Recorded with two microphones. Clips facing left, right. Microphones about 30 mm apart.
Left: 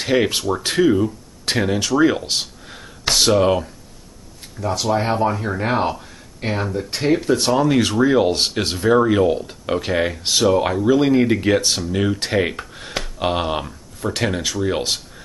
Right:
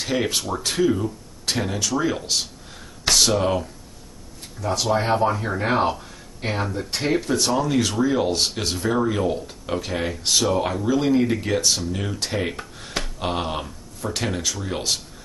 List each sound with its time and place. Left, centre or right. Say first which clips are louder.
0.0 s speech: left 5 dB; left
4.8 s speech: left 1 dB; centre
7.3 s speech: left 4 dB; left
12.5 s a sound: left 3 dB; left
13.2 s speech: left 6 dB; centre